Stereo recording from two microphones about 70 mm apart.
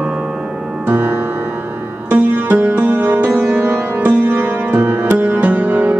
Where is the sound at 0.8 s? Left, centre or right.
Right.